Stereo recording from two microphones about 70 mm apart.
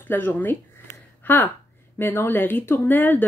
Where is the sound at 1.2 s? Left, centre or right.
Left.